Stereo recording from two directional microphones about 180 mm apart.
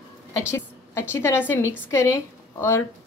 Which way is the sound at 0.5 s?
15° left (ahead or behind).